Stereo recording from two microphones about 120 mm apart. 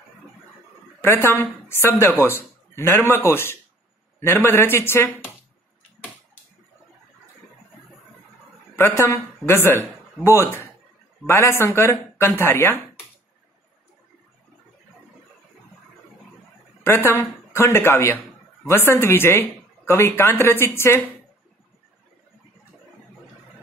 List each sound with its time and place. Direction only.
1.0 s a woman's voice: 20° left (ahead or behind)
8.7 s a woman's voice: 20° left (ahead or behind)
16.8 s a woman's voice: 20° left (ahead or behind)